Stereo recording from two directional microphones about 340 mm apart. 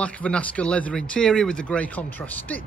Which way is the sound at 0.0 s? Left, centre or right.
Centre.